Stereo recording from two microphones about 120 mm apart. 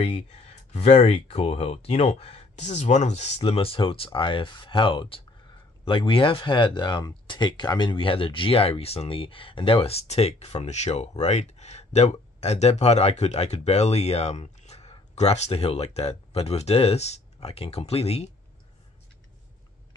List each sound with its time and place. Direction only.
0.0 s speech: 55° left (ahead or behind)
3.3 s speech: 50° left (ahead or behind)